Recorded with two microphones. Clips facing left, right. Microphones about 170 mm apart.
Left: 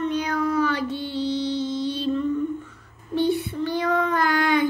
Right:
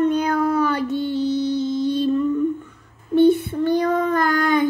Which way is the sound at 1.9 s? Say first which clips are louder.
Right 7 dB; 50° right (ahead or behind).